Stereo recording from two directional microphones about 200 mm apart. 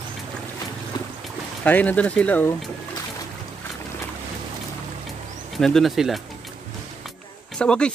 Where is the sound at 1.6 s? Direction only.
10° left (ahead or behind).